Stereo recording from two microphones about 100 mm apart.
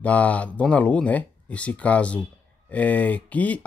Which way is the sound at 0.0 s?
15° left (ahead or behind).